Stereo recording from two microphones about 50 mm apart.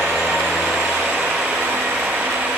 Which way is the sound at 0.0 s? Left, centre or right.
Centre.